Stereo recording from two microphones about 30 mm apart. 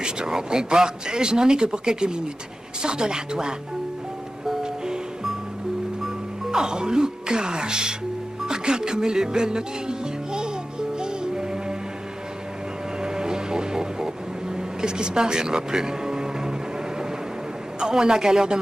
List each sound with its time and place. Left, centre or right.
0.0 s speech: right
6.5 s speech: right
8.5 s music: right
13.0 s music: right
17.7 s speech: right